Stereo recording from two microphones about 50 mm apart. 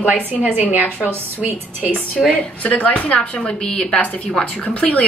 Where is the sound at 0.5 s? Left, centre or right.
Right.